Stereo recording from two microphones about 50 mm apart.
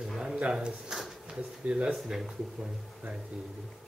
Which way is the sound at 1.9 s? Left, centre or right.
Centre.